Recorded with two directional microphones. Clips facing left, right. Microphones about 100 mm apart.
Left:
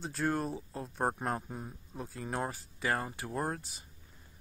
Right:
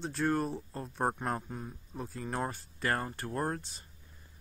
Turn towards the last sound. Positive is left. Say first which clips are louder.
# right 1 dB
turn(degrees=5)  # may be behind; listen again after turning